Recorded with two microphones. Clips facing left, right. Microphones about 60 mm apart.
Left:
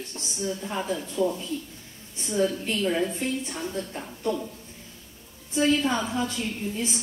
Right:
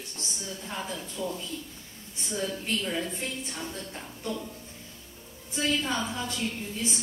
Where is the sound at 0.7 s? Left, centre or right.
Centre.